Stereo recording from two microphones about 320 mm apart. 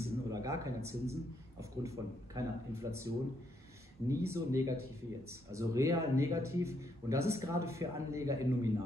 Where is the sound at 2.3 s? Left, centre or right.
Centre.